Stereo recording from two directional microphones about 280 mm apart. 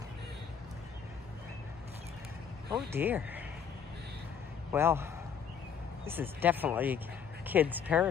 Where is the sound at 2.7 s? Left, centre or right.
Centre.